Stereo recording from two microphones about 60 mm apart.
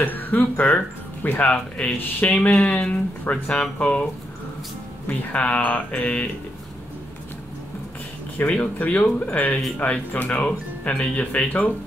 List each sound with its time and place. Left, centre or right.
0.0 s speech: left
8.4 s speech: left